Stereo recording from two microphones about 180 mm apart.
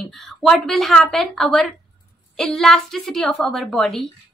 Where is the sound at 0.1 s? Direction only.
Centre (ahead or behind).